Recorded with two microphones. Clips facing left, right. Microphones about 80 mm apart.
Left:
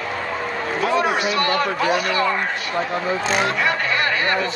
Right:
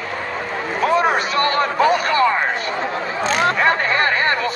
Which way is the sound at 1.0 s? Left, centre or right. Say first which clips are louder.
Right 2 dB; right.